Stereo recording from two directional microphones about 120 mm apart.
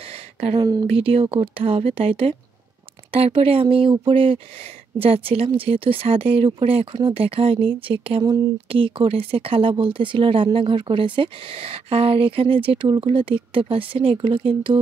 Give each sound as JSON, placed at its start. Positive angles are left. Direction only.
{"t": 0.1, "sound": "a sound", "side_deg": -55}
{"t": 0.6, "sound": "speech", "side_deg": -35}
{"t": 0.8, "sound": "speech", "side_deg": -50}